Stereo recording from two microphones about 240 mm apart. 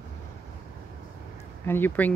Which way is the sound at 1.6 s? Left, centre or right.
Centre.